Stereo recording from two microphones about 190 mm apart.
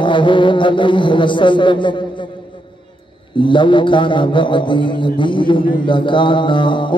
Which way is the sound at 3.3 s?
25° left (ahead or behind).